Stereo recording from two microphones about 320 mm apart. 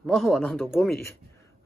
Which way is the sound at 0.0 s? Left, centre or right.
Centre.